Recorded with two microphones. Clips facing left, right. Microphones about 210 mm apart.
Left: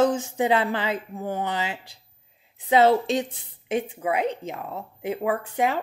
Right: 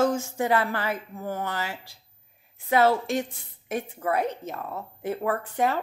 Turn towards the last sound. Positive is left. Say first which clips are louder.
# left 1 dB
turn(degrees=15)  # may be behind; listen again after turning